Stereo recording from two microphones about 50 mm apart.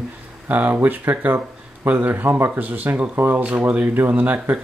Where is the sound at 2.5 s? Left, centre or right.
Right.